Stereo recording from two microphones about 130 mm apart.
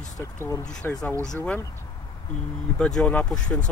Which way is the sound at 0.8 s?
15° left (ahead or behind).